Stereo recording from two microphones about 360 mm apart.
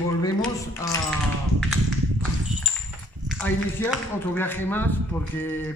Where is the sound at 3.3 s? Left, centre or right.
Centre.